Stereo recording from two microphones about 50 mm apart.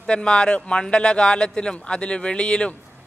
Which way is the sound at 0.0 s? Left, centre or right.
Centre.